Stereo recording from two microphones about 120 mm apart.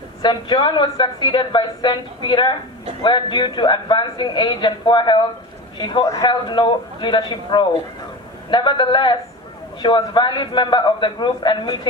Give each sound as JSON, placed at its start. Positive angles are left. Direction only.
{"t": 0.2, "sound": "a woman's voice", "side_deg": 40}
{"t": 6.2, "sound": "a woman's voice", "side_deg": 40}